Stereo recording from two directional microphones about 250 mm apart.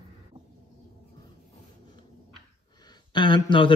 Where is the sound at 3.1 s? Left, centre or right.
Centre.